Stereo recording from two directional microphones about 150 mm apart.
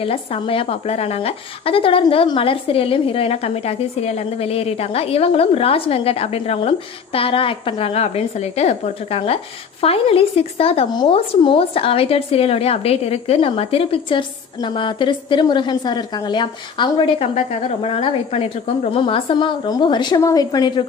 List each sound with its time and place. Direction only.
0.0 s a woman's voice: 40° left (ahead or behind)
17.5 s a woman's voice: 50° left (ahead or behind); by 20.8 s 30° left (ahead or behind)